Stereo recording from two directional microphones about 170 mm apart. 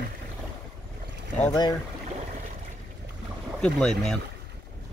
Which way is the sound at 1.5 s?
25° left (ahead or behind).